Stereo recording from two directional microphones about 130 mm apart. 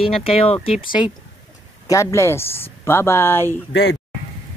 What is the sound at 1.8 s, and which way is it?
Speech, 25° left (ahead or behind).